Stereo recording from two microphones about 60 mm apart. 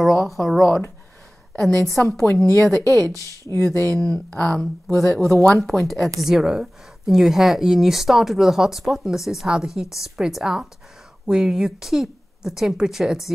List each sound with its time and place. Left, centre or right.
0.0 s speech: centre
1.5 s a woman's voice: centre
2.8 s speech: right
3.7 s speech: centre